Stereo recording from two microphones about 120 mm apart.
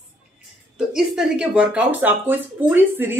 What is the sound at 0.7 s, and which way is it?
Speech, 5° right (ahead or behind).